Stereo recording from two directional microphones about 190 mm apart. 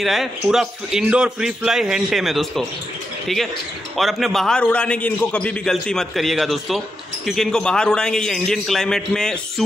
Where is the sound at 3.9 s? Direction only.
Centre (ahead or behind).